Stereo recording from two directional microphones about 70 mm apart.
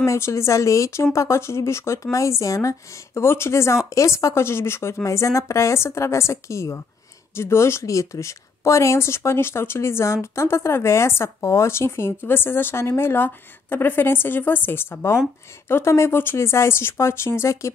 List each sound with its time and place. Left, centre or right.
0.0 s a woman's voice: left
3.2 s a woman's voice: left